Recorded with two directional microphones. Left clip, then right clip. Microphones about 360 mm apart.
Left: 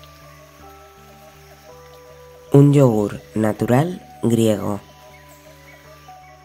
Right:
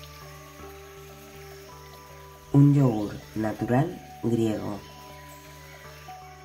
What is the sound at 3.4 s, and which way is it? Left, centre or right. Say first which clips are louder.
Speech: left 8 dB; left.